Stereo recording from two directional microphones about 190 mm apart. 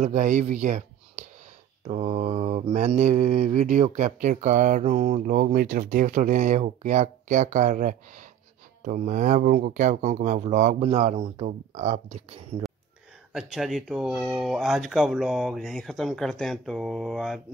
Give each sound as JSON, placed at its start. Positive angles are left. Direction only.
{"t": 0.0, "sound": "speech", "side_deg": -40}
{"t": 1.9, "sound": "mantra", "side_deg": -35}
{"t": 13.3, "sound": "speech", "side_deg": 0}